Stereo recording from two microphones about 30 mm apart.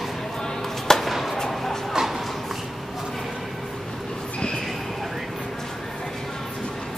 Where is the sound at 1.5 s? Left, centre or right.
Centre.